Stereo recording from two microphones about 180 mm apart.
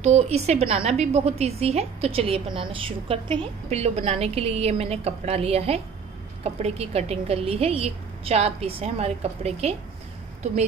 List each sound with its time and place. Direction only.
0.0 s a woman's voice: 35° right (ahead or behind)